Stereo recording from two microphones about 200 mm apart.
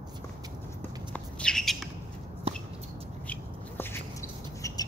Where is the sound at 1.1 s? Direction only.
5° left (ahead or behind).